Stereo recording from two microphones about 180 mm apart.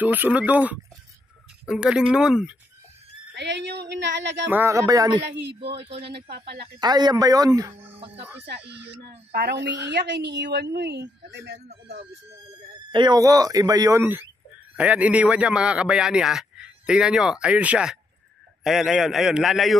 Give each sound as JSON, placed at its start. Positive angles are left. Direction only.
{"t": 0.0, "sound": "a man's voice", "side_deg": -10}
{"t": 3.3, "sound": "a woman's voice", "side_deg": -75}
{"t": 4.5, "sound": "speech", "side_deg": -15}
{"t": 5.7, "sound": "speech", "side_deg": -30}
{"t": 6.3, "sound": "a woman's voice", "side_deg": -65}
{"t": 6.8, "sound": "speech", "side_deg": -25}
{"t": 9.3, "sound": "a woman's voice", "side_deg": -65}
{"t": 12.9, "sound": "a man's voice", "side_deg": -25}